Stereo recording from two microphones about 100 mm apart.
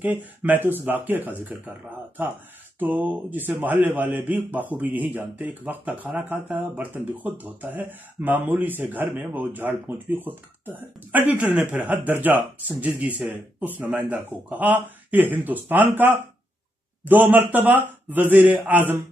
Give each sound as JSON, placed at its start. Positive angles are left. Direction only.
{"t": 0.0, "sound": "speech", "side_deg": -15}